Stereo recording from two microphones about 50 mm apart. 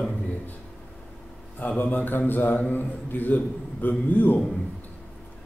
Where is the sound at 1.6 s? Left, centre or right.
Left.